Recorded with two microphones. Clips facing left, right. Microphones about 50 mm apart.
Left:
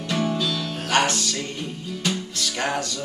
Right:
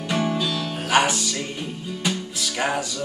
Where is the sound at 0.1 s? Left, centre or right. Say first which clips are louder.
Right 1 dB; centre.